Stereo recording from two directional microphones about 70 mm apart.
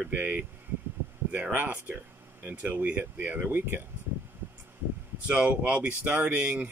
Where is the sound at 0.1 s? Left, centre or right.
Right.